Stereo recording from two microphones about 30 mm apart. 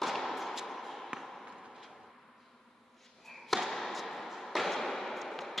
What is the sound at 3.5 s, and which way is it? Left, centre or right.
Basketball bounce, centre.